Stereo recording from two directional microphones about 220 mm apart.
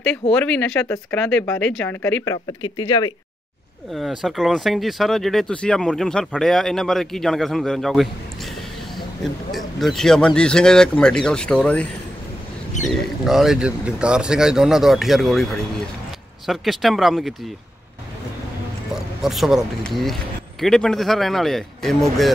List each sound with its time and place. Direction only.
0.3 s speech: 5° left (ahead or behind)
4.2 s speech: centre (ahead or behind)
9.2 s speech: centre (ahead or behind)
16.4 s speech: centre (ahead or behind)
19.2 s speech: centre (ahead or behind)